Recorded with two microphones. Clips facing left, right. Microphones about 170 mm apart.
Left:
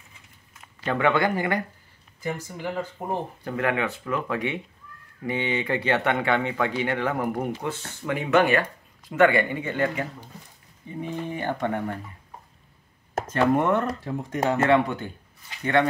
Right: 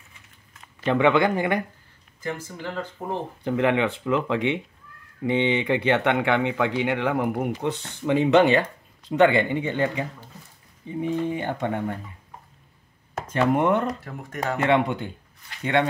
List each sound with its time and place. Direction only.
0.8 s speech: 20° right (ahead or behind)
2.2 s speech: 10° left (ahead or behind)
3.4 s speech: 20° right (ahead or behind)
13.3 s speech: 15° right (ahead or behind)
14.0 s speech: 20° left (ahead or behind)
14.6 s speech: 15° right (ahead or behind)